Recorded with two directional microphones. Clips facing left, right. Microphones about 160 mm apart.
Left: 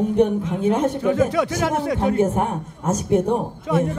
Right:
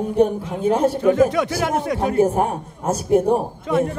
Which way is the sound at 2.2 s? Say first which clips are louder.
Right 2 dB; 30° right (ahead or behind).